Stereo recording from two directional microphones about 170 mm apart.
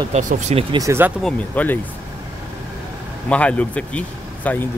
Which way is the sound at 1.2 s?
10° left (ahead or behind).